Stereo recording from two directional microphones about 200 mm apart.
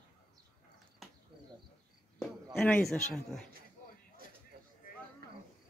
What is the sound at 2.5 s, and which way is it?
Speech, 5° left (ahead or behind).